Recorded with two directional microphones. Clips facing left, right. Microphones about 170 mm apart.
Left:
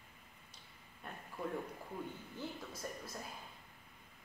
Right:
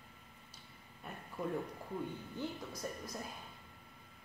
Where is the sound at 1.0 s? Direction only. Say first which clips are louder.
Right 1 dB; 5° right (ahead or behind).